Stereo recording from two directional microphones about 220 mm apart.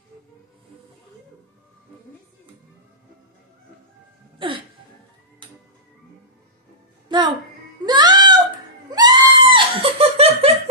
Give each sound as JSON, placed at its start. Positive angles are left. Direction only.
{"t": 4.4, "sound": "music", "side_deg": -20}
{"t": 7.1, "sound": "music", "side_deg": -20}
{"t": 8.9, "sound": "laughter", "side_deg": -20}